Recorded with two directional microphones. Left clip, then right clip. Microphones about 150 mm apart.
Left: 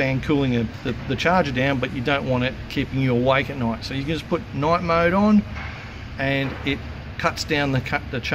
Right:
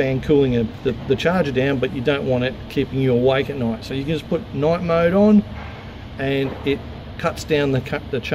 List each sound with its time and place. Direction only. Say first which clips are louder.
0.0 s speech: right 5 dB; 90° right